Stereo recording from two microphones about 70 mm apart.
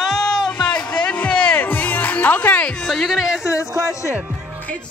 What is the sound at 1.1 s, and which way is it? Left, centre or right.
Music, centre.